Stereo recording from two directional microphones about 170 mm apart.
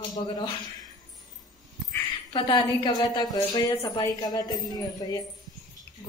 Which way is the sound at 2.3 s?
30° left (ahead or behind).